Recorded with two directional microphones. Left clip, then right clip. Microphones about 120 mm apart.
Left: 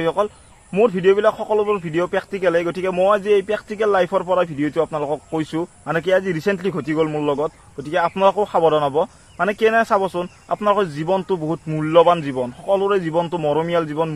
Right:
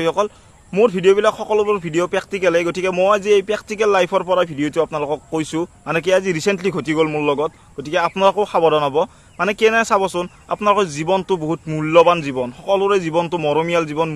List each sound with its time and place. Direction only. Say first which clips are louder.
0.0 s speech: right 1 dB; 40° right (ahead or behind)
6.8 s a man's voice: right 2 dB; 60° right (ahead or behind)
7.1 s speech: right 2 dB; 40° right (ahead or behind)